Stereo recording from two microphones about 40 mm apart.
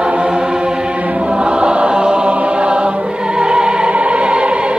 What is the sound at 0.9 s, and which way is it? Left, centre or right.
Choir, right.